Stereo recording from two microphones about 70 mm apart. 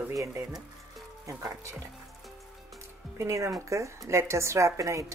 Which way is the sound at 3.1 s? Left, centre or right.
Right.